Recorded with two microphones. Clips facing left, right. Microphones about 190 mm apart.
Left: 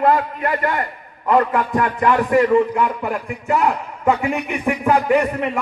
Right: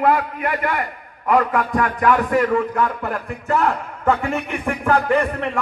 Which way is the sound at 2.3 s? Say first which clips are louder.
Left 4 dB; 10° left (ahead or behind).